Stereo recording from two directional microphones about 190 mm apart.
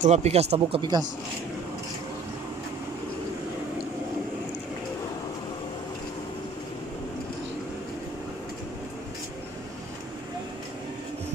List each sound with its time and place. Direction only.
0.0 s speech: 35° right (ahead or behind)